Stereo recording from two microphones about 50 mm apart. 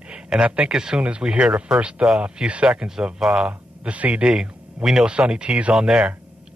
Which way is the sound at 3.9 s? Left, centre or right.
Right.